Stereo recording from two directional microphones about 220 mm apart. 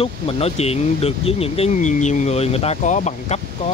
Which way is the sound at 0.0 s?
25° left (ahead or behind).